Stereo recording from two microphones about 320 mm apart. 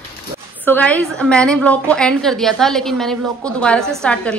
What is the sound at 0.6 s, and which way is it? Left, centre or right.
A woman's voice, centre.